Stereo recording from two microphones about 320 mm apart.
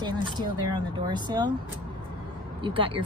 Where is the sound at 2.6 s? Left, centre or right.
Centre.